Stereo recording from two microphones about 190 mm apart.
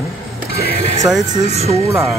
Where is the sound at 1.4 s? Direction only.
35° right (ahead or behind).